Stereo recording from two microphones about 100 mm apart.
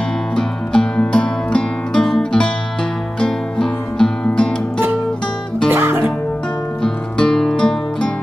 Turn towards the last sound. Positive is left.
turn(degrees=5)  # may be behind; listen again after turning